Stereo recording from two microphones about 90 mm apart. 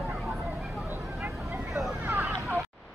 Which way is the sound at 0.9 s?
35° right (ahead or behind).